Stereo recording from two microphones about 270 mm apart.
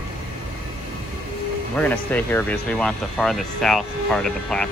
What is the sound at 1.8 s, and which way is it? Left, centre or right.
Speech, centre.